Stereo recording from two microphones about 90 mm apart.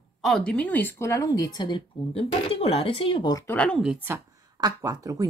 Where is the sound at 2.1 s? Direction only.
90° left.